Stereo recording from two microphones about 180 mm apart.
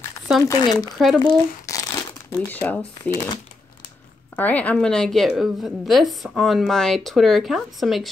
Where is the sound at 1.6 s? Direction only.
20° left (ahead or behind).